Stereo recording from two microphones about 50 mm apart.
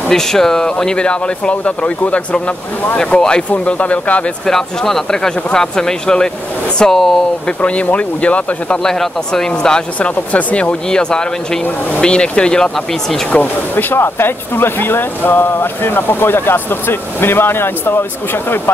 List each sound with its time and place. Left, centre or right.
0.1 s speech: centre; by 4.2 s left
4.5 s speech: centre
7.4 s speech: left
8.8 s speech: centre
9.9 s speech: left
13.4 s speech: left
13.9 s speech: left